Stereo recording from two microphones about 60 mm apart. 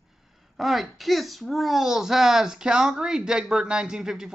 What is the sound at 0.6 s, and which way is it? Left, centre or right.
A child's voice, centre.